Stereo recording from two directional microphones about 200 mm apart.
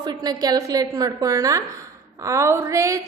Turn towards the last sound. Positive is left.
turn(degrees=-15)  # may be behind; listen again after turning